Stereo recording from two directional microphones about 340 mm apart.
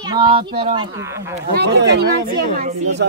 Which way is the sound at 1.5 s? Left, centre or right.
Right.